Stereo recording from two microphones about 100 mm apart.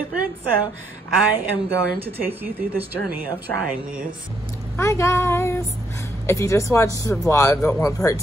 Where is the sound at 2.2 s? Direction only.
20° right (ahead or behind).